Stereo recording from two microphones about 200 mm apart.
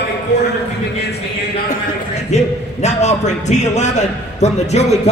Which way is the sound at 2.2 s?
35° left (ahead or behind).